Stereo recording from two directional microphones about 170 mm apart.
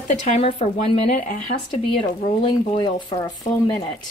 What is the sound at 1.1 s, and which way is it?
Speech, 50° left (ahead or behind).